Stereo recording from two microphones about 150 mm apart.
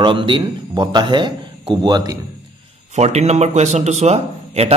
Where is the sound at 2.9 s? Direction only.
50° right (ahead or behind).